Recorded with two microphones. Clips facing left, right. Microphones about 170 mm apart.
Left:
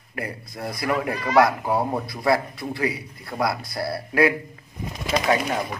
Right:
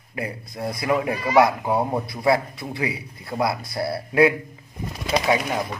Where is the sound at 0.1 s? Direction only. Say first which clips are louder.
Right 2 dB; 20° right (ahead or behind).